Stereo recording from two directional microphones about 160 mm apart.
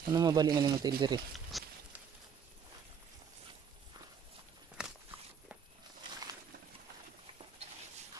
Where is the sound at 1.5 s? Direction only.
Centre (ahead or behind).